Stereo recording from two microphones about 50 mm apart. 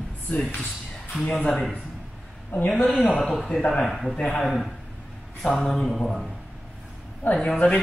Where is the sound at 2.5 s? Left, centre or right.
Left.